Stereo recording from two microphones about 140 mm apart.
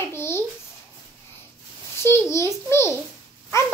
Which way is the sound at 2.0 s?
15° left (ahead or behind).